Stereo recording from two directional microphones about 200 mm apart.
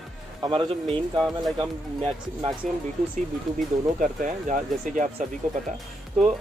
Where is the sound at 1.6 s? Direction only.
25° right (ahead or behind).